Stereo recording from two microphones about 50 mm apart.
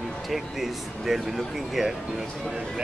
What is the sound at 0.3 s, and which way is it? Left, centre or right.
Speech, centre.